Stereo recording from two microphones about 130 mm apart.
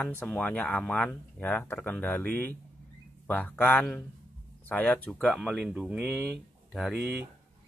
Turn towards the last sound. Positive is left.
turn(degrees=0)  # may be behind; listen again after turning